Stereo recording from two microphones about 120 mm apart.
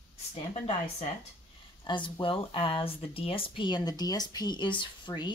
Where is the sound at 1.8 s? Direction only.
45° left (ahead or behind).